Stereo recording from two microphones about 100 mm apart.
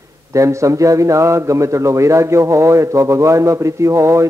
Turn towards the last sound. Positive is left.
turn(degrees=-30)  # may be behind; listen again after turning